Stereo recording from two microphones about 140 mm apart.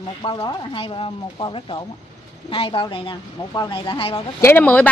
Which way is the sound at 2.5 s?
40° left (ahead or behind).